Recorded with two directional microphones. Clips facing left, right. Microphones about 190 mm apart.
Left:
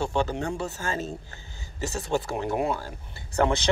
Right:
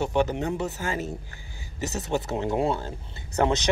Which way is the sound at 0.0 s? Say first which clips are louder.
Right 2 dB; 20° right (ahead or behind).